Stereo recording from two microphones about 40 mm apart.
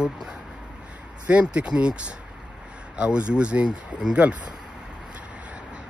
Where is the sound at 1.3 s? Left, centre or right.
Right.